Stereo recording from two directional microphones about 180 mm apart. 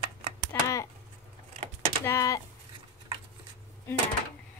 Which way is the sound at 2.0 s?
15° left (ahead or behind).